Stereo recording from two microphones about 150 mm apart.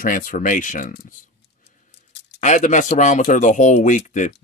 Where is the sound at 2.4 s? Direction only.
55° left (ahead or behind).